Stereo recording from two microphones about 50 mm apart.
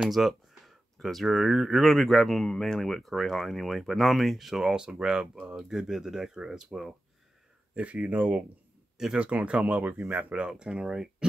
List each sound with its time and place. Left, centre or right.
0.1 s speech: centre
7.7 s speech: right
8.9 s speech: centre
9.2 s speech: right
10.4 s speech: centre